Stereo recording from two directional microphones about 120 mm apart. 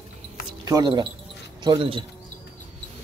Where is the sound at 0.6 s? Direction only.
35° right (ahead or behind).